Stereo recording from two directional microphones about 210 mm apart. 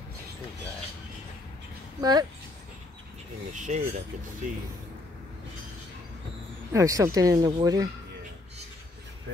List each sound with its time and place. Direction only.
2.0 s speech: 20° right (ahead or behind)
3.5 s speech: 35° right (ahead or behind)
6.7 s speech: 15° right (ahead or behind)